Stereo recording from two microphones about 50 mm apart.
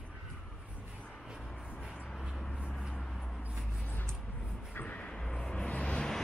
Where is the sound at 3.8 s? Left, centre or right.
Left.